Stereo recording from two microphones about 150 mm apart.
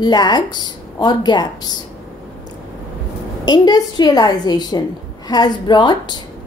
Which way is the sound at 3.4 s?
25° left (ahead or behind).